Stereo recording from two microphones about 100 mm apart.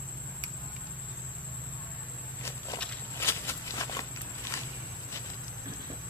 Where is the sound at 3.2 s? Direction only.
25° left (ahead or behind).